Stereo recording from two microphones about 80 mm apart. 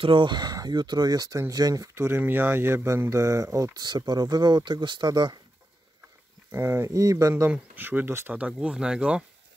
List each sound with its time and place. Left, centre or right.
0.1 s speech: right
2.0 s speech: right
3.7 s speech: right
5.0 s speech: right
6.5 s speech: right
7.5 s speech: right
8.3 s speech: centre